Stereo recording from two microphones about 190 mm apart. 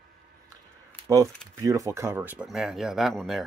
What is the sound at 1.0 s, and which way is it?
Speech, 15° right (ahead or behind).